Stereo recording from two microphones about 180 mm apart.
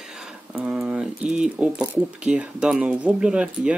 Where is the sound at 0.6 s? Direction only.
5° right (ahead or behind).